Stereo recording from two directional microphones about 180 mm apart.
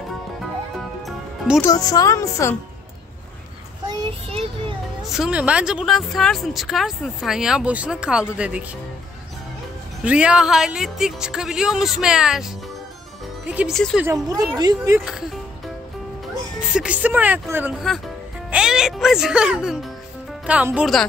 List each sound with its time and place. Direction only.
1.6 s speech: 20° left (ahead or behind)
4.3 s a sound: 30° right (ahead or behind)
5.1 s speech: 5° right (ahead or behind)
10.0 s speech: 5° right (ahead or behind)
13.5 s speech: 5° right (ahead or behind)
13.7 s speech: 5° left (ahead or behind)
14.0 s a woman's voice: 20° right (ahead or behind)
15.0 s speech: 5° right (ahead or behind)
16.7 s speech: 5° right (ahead or behind)